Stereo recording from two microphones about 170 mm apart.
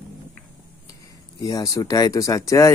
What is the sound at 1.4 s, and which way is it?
Speech, 20° left (ahead or behind).